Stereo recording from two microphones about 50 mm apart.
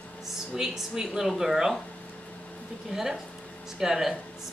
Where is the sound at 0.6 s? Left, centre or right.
Centre.